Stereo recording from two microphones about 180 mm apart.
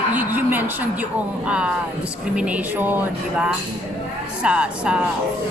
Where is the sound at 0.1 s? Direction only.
10° right (ahead or behind).